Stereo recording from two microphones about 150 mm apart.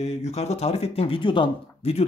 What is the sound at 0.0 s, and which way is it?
Speech, 45° left (ahead or behind).